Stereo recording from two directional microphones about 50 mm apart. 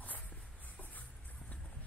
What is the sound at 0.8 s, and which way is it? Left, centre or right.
Music, left.